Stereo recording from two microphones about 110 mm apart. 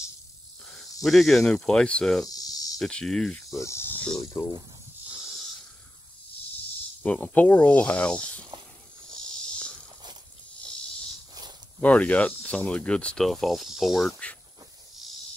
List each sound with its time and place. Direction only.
1.0 s speech: centre (ahead or behind)
2.2 s cricket: 35° left (ahead or behind)
2.8 s speech: 5° left (ahead or behind)
3.5 s snake: 25° left (ahead or behind)
4.2 s speech: 25° left (ahead or behind)
7.0 s speech: 15° left (ahead or behind)
9.6 s walk: 10° left (ahead or behind)
11.8 s speech: 15° left (ahead or behind)